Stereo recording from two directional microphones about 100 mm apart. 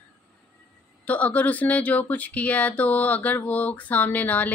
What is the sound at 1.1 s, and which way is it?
Speech, 15° left (ahead or behind).